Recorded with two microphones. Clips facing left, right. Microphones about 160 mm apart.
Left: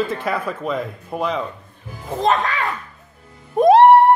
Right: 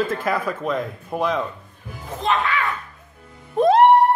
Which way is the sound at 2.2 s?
40° left (ahead or behind).